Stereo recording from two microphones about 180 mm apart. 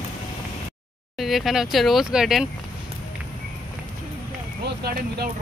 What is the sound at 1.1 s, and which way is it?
Speech, centre (ahead or behind).